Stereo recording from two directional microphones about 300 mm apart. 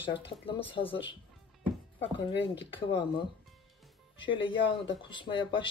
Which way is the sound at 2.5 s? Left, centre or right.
Centre.